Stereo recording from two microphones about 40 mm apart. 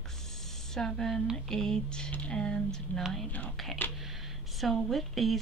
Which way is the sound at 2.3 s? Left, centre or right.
Centre.